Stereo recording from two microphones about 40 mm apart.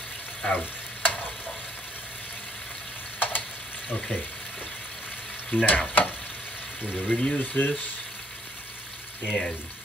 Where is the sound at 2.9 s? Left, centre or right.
Left.